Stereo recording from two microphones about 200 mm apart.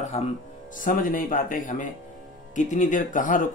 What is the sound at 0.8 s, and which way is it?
Speech, 45° left (ahead or behind).